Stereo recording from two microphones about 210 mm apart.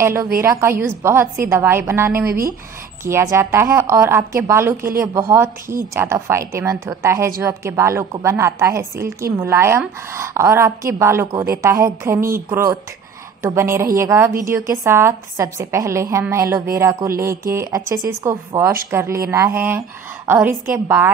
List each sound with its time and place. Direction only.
0.0 s a woman's voice: 10° right (ahead or behind)
2.2 s speech: 45° right (ahead or behind)
3.1 s a woman's voice: 10° right (ahead or behind)